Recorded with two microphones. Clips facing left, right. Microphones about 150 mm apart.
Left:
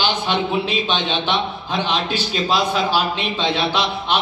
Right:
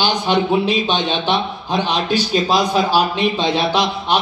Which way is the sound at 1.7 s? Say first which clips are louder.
Right 5 dB; 15° right (ahead or behind).